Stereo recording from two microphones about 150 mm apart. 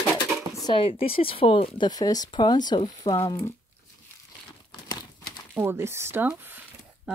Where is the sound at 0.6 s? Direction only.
30° left (ahead or behind).